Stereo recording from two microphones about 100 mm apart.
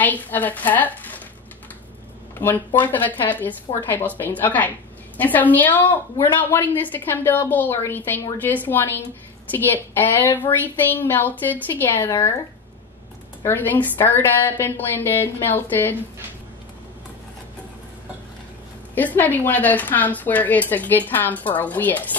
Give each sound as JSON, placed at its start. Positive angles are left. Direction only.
{"t": 0.0, "sound": "a woman's voice", "side_deg": 15}
{"t": 2.3, "sound": "a woman's voice", "side_deg": 20}
{"t": 13.4, "sound": "a woman's voice", "side_deg": 20}
{"t": 18.9, "sound": "a woman's voice", "side_deg": 15}